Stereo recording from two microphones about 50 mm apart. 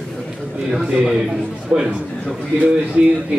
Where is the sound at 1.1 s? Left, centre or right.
Centre.